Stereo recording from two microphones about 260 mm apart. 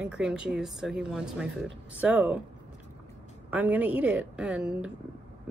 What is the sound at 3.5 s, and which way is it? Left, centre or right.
Speech, centre.